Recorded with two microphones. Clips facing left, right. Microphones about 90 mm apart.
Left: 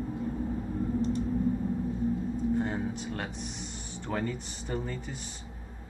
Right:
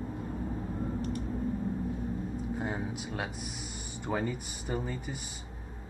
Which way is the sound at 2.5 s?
5° right (ahead or behind).